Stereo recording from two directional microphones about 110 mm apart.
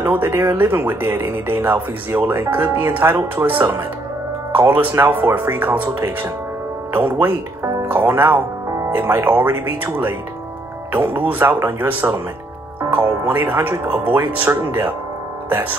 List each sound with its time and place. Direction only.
0.0 s speech: 20° right (ahead or behind)
13.3 s speech: 20° right (ahead or behind)